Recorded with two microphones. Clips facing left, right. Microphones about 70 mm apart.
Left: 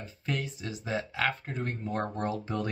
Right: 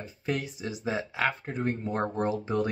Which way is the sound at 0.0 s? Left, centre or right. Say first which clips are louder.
Right 3 dB; centre.